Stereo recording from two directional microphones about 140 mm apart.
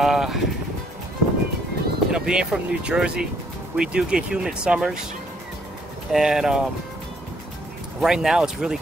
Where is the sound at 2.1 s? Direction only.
5° right (ahead or behind).